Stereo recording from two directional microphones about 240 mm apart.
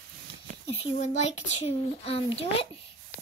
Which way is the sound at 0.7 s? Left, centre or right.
Left.